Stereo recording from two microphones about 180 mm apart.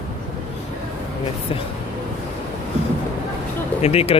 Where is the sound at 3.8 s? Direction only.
35° left (ahead or behind).